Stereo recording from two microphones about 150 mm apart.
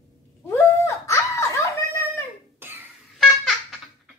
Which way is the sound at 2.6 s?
15° right (ahead or behind).